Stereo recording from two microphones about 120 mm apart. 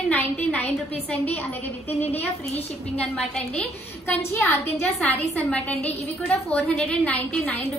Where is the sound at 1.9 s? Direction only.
60° left (ahead or behind).